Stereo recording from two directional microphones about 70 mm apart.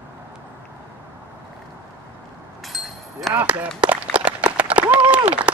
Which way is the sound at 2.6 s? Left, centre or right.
Centre.